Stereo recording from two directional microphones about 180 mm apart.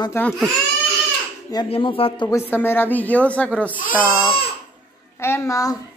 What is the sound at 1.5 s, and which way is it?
Speech, 25° left (ahead or behind).